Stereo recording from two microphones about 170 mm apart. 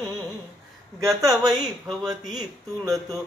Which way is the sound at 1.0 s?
20° right (ahead or behind).